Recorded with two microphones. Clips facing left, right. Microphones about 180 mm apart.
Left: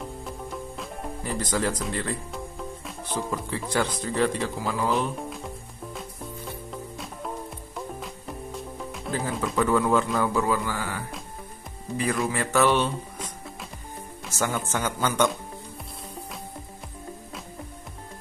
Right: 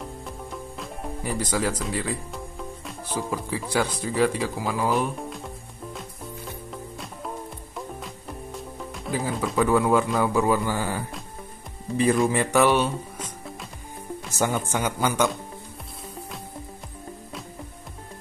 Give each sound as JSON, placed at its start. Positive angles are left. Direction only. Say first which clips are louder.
{"t": 0.0, "sound": "music", "louder": "left 1 dB", "side_deg": 0}
{"t": 1.2, "sound": "speech", "louder": "right 1 dB", "side_deg": -10}
{"t": 6.7, "sound": "music", "louder": "even", "side_deg": 0}
{"t": 9.7, "sound": "a man's voice", "louder": "right 2 dB", "side_deg": -10}
{"t": 12.0, "sound": "speech", "louder": "right 6 dB", "side_deg": -25}
{"t": 14.3, "sound": "speech", "louder": "right 2 dB", "side_deg": -20}